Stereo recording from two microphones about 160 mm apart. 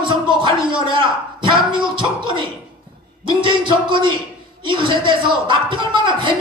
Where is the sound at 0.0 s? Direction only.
30° right (ahead or behind).